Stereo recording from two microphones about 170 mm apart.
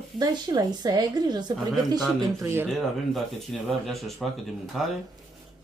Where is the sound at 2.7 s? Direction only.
Centre (ahead or behind).